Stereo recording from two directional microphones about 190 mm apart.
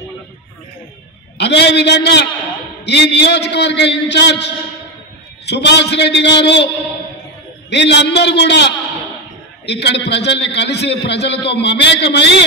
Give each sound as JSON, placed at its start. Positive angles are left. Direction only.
{"t": 1.4, "sound": "a man's voice", "side_deg": 65}
{"t": 5.5, "sound": "a man's voice", "side_deg": 65}
{"t": 7.7, "sound": "a man's voice", "side_deg": 65}